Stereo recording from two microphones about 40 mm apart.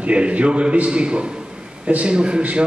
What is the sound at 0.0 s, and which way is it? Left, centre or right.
A man's voice, right.